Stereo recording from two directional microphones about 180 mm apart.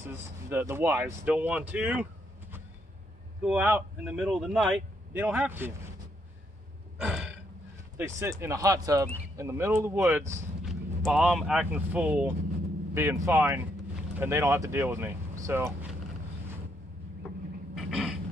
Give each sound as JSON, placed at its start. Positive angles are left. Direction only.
{"t": 0.0, "sound": "speech", "side_deg": -15}
{"t": 3.4, "sound": "speech", "side_deg": -10}
{"t": 7.0, "sound": "gasp", "side_deg": -5}
{"t": 8.0, "sound": "speech", "side_deg": -15}
{"t": 10.6, "sound": "speech", "side_deg": 0}
{"t": 17.7, "sound": "a sound", "side_deg": 0}